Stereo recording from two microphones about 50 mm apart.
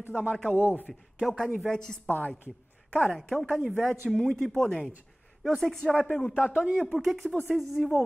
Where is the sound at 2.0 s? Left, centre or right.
Left.